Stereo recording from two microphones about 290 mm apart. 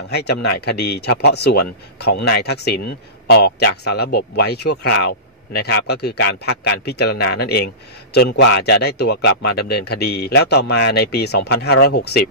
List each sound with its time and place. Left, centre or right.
0.1 s speech: left